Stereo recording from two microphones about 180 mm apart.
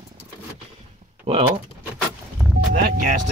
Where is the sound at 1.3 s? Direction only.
30° right (ahead or behind).